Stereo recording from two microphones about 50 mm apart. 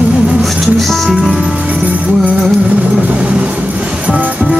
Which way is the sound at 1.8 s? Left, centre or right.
Right.